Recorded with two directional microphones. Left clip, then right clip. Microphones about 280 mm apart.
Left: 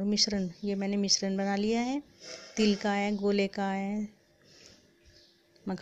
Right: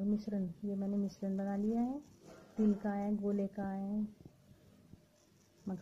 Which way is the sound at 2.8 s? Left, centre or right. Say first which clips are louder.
Left 9 dB; left.